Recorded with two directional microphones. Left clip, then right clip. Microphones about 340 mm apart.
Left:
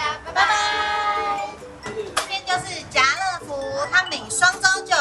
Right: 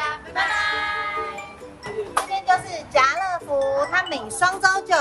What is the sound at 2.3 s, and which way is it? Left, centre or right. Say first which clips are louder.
Music: right 4 dB; centre.